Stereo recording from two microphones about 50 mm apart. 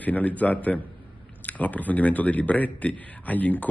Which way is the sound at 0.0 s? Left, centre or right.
Left.